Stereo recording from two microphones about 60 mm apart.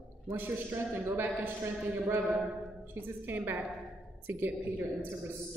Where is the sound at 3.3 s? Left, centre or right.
Right.